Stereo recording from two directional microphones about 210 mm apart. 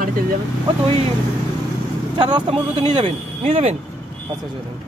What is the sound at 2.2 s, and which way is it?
Speech, 20° right (ahead or behind).